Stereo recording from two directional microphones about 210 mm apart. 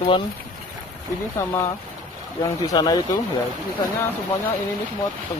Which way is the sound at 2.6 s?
20° left (ahead or behind).